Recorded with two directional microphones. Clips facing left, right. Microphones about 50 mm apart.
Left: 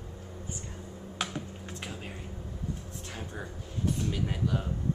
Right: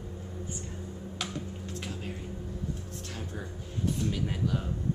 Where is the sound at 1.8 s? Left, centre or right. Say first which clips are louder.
Right 1 dB; centre.